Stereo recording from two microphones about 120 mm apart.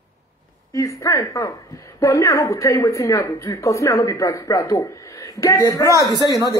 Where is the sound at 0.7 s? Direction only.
25° left (ahead or behind).